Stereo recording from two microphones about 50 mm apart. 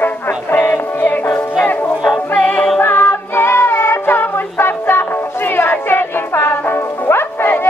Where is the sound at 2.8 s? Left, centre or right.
Left.